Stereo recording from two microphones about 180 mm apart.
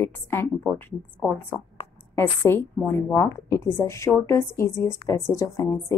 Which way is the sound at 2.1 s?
15° left (ahead or behind).